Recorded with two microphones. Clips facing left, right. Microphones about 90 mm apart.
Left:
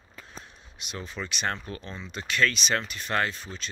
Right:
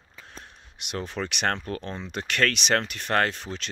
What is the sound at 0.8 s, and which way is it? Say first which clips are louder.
Speech: right 5 dB; 65° right (ahead or behind).